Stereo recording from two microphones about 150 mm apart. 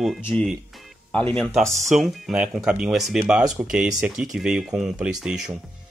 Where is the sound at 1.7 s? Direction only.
50° right (ahead or behind).